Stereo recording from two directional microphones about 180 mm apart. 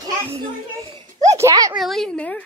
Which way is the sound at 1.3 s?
15° right (ahead or behind).